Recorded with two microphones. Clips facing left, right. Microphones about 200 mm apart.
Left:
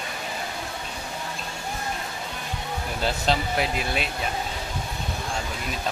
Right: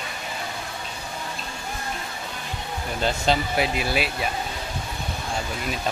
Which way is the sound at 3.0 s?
Centre (ahead or behind).